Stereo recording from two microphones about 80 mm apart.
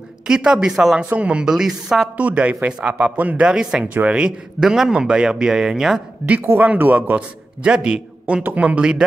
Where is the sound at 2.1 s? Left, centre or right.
Centre.